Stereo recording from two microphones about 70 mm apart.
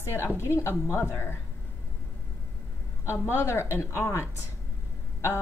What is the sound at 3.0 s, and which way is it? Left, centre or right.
Speech, left.